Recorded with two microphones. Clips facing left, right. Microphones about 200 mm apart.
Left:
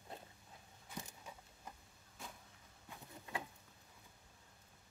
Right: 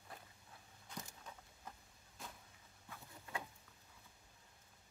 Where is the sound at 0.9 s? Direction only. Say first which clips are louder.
Left 1 dB; 10° left (ahead or behind).